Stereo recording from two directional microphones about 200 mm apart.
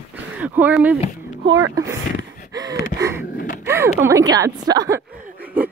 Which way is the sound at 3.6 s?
10° right (ahead or behind).